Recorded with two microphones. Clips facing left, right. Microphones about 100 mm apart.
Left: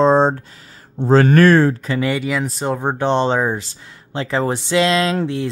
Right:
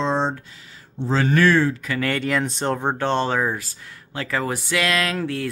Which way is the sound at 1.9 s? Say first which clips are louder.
Left 4 dB; 15° left (ahead or behind).